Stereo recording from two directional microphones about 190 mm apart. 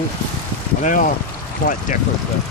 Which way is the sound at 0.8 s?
40° left (ahead or behind).